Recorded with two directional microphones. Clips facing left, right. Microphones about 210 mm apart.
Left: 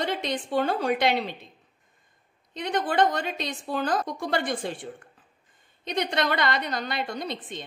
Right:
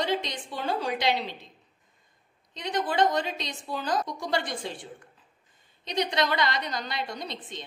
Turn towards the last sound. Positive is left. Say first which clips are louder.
# left 4 dB
turn(degrees=55)  # may be behind; listen again after turning